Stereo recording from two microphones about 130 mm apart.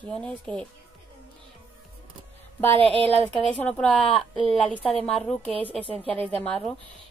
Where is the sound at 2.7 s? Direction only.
45° right (ahead or behind).